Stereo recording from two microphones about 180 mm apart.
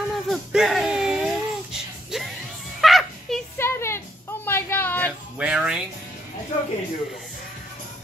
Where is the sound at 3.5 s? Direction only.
15° left (ahead or behind).